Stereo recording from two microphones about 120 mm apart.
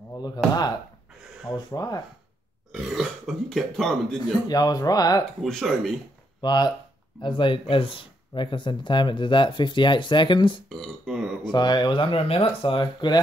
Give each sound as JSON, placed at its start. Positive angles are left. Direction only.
{"t": 0.4, "sound": "speech", "side_deg": 0}
{"t": 1.5, "sound": "speech", "side_deg": 30}
{"t": 2.7, "sound": "speech", "side_deg": 0}
{"t": 4.5, "sound": "speech", "side_deg": 30}
{"t": 5.4, "sound": "speech", "side_deg": 0}
{"t": 6.4, "sound": "speech", "side_deg": 35}
{"t": 10.7, "sound": "speech", "side_deg": 0}
{"t": 11.5, "sound": "speech", "side_deg": 35}